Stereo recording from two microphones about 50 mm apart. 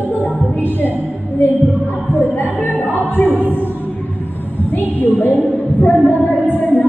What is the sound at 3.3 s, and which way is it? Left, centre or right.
Music, right.